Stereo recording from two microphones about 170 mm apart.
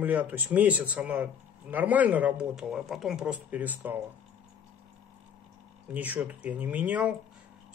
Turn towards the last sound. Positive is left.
turn(degrees=-10)  # may be behind; listen again after turning